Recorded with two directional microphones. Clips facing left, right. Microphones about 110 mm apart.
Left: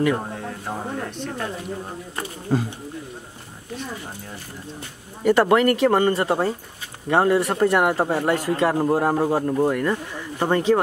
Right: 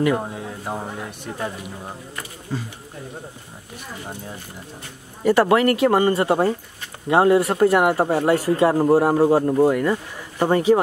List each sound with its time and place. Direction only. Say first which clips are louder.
0.0 s speech: right 1 dB; 5° right (ahead or behind)
2.5 s speech: left 7 dB; 45° left (ahead or behind)
5.2 s speech: even; 5° right (ahead or behind)